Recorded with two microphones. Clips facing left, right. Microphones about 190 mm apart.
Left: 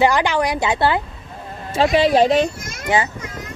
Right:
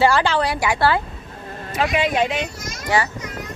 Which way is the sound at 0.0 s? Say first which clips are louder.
Left 1 dB; 15° left (ahead or behind).